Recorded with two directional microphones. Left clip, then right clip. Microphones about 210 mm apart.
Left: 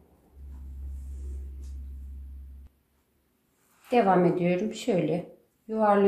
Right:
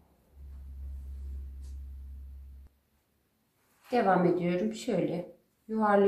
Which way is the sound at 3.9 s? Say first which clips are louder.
Left 4 dB; 25° left (ahead or behind).